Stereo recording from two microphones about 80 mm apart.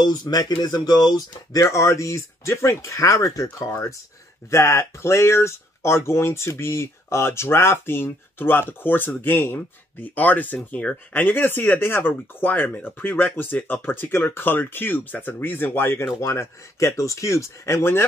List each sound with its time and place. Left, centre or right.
0.0 s speech: left